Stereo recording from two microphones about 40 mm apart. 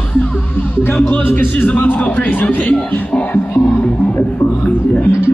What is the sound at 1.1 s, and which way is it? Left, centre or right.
A man's voice, left.